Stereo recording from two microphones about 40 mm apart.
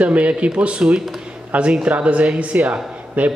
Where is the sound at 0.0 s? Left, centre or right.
Right.